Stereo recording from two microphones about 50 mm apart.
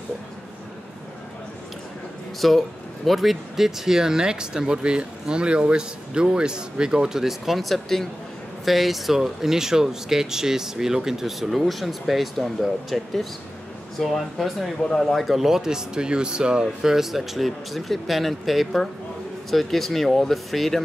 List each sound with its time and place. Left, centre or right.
2.4 s speech: centre
16.6 s speech: centre